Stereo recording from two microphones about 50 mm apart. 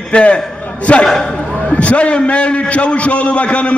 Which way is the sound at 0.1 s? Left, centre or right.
Left.